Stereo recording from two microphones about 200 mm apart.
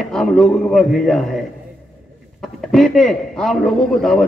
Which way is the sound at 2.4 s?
Centre (ahead or behind).